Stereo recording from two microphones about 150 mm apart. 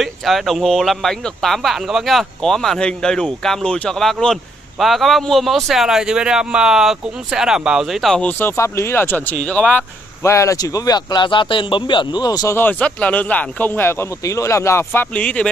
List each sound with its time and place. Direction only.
0.0 s speech: centre (ahead or behind)
10.2 s speech: 20° left (ahead or behind)
12.5 s speech: 10° left (ahead or behind)